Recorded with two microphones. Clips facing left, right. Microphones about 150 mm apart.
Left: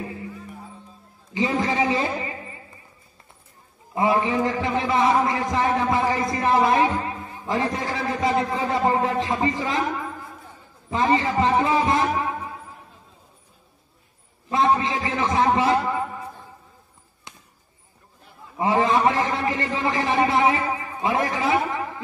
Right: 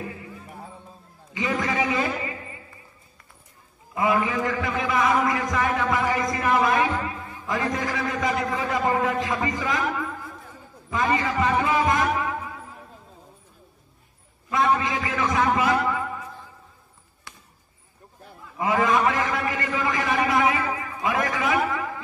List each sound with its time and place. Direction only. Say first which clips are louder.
1.3 s a man's voice: left 3 dB; 30° left (ahead or behind)
3.9 s a man's voice: left 2 dB; 30° left (ahead or behind)
10.9 s a man's voice: left 3 dB; 30° left (ahead or behind)
14.5 s a sound: left 2 dB; 30° left (ahead or behind)
17.3 s basketball bounce: left 1 dB; 20° left (ahead or behind)
18.6 s a man's voice: left 2 dB; 30° left (ahead or behind)